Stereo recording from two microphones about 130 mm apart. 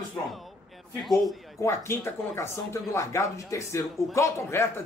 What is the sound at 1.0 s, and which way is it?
Speech, centre (ahead or behind).